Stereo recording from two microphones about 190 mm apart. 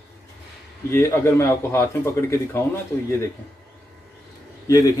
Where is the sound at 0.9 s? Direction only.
15° left (ahead or behind).